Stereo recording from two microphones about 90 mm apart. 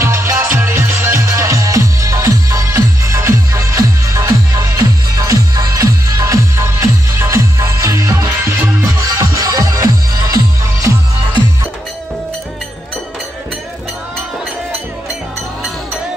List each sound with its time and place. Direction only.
0.0 s music: 30° right (ahead or behind)
9.0 s music: 40° right (ahead or behind)